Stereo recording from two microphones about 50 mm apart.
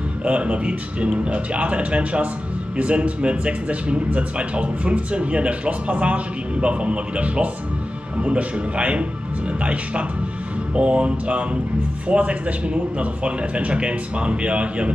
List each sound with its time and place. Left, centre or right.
0.2 s speech: right